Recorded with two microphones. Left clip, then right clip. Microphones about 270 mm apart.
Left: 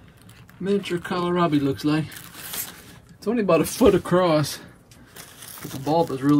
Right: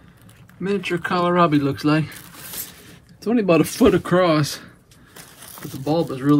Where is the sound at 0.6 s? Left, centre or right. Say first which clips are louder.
Right 2 dB; centre.